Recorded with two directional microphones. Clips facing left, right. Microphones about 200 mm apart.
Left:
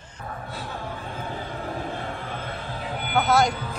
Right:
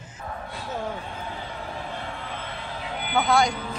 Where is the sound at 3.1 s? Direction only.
Centre (ahead or behind).